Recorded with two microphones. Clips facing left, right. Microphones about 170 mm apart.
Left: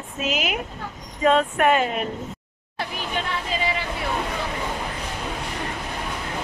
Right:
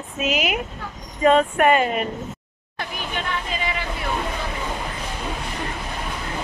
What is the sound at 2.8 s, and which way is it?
Chatter, 30° left (ahead or behind).